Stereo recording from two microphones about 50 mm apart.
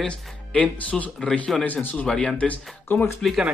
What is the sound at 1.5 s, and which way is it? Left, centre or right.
Speech, centre.